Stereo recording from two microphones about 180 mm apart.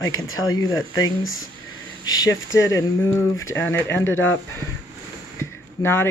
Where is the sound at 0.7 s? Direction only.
90° left.